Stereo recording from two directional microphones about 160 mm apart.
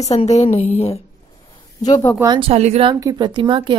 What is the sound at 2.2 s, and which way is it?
Speech, 25° right (ahead or behind).